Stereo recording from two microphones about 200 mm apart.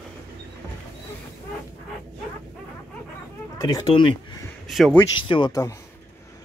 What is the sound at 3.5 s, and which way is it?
Speech, 20° left (ahead or behind).